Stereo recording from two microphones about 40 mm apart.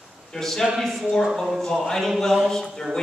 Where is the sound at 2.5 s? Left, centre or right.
Centre.